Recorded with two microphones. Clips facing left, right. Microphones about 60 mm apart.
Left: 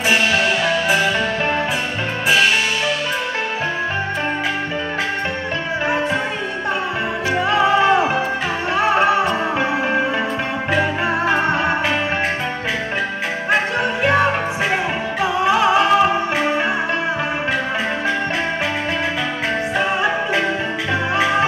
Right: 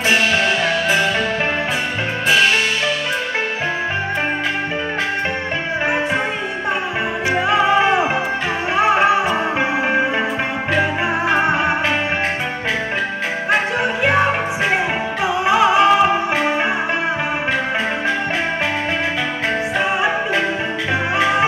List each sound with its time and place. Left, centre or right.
0.1 s music: centre
7.2 s music: centre
14.0 s music: centre
15.4 s music: centre